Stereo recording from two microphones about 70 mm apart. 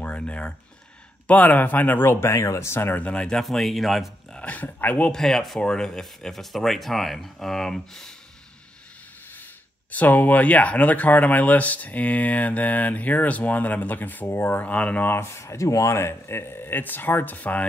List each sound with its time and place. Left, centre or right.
0.0 s a sound: centre
1.2 s speech: left
3.0 s speech: centre
4.4 s speech: left
5.1 s speech: centre
9.8 s speech: left
15.0 s speech: left